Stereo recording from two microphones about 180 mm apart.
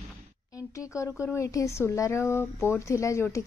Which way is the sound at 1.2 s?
15° left (ahead or behind).